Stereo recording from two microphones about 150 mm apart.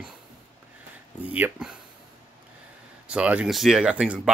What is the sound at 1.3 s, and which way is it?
Speech, 10° right (ahead or behind).